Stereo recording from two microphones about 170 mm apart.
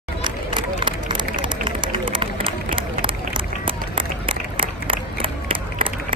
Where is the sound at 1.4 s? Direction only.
30° right (ahead or behind).